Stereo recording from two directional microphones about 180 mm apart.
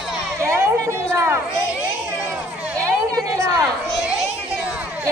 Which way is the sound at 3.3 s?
20° right (ahead or behind).